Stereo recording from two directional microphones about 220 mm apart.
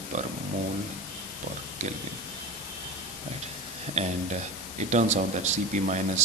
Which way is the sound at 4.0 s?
30° right (ahead or behind).